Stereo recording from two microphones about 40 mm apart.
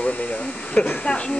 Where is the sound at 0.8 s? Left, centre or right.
Left.